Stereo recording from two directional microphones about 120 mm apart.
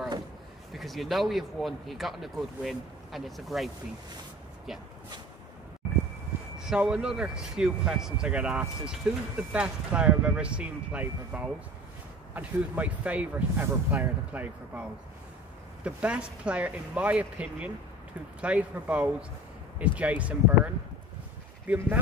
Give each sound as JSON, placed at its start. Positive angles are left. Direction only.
{"t": 0.7, "sound": "speech", "side_deg": 0}
{"t": 6.6, "sound": "speech", "side_deg": -5}